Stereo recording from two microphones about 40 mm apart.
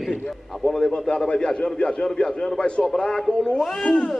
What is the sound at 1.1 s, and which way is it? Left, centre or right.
A man's voice, left.